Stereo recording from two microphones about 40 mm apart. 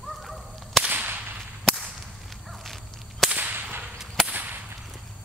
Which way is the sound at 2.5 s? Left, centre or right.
Centre.